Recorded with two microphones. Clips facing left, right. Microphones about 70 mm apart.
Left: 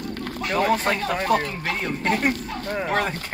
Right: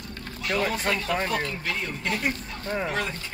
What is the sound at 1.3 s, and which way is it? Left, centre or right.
Speech, left.